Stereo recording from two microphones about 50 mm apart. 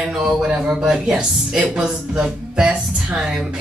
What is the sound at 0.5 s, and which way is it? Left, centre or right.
A woman's voice, centre.